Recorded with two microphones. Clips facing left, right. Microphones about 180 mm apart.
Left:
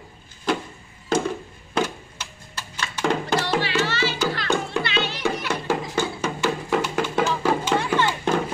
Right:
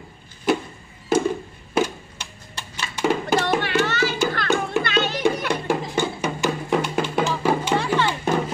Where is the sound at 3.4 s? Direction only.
55° right (ahead or behind).